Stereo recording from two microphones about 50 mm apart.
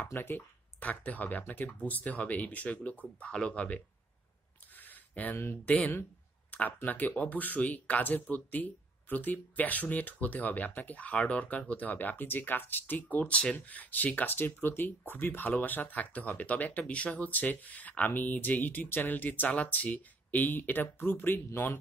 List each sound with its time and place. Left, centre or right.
0.1 s speech: left
0.7 s speech: left
4.7 s a sound: left
5.7 s speech: left